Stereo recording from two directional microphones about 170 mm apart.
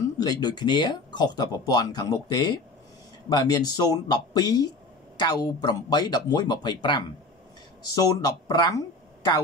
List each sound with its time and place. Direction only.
0.2 s speech: 25° left (ahead or behind)